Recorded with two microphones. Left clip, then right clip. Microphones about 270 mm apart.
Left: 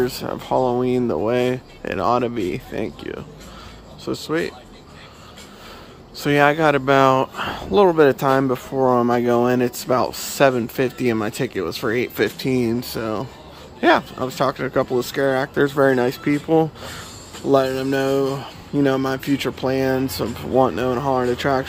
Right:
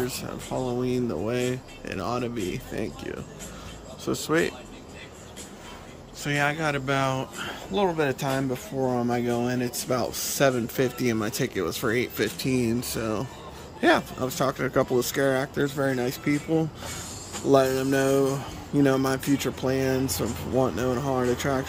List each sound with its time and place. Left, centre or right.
0.0 s speech: centre
6.1 s speech: centre